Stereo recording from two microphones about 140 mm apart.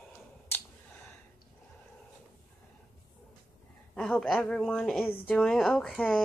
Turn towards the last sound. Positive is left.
turn(degrees=5)  # may be behind; listen again after turning